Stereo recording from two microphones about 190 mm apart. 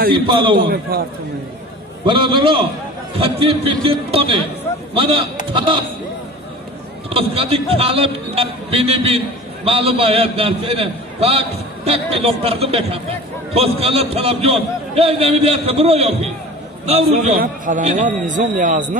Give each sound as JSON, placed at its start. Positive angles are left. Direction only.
{"t": 0.1, "sound": "speech", "side_deg": -25}
{"t": 0.6, "sound": "a man's voice", "side_deg": -55}
{"t": 2.0, "sound": "speech", "side_deg": -25}
{"t": 7.2, "sound": "a man's voice", "side_deg": -30}